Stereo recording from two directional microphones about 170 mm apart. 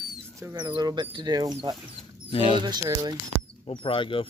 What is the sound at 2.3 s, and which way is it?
Speech, 35° left (ahead or behind).